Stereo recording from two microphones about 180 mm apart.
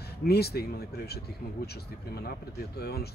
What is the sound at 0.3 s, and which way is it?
Speech, 60° left (ahead or behind).